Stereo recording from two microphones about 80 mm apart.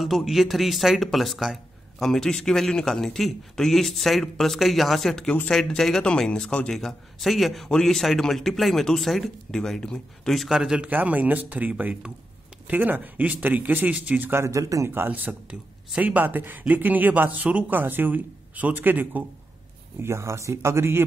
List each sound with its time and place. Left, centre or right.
0.0 s speech: centre
10.5 s a man's voice: centre
10.9 s speech: right
14.4 s speech: right
14.9 s speech: right
20.0 s speech: right